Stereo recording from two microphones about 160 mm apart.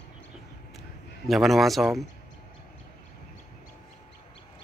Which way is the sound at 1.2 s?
Centre (ahead or behind).